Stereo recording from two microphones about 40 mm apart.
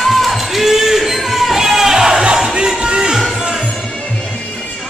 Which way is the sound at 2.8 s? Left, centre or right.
Centre.